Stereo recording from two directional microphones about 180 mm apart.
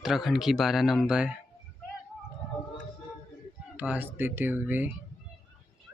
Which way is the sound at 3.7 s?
10° right (ahead or behind).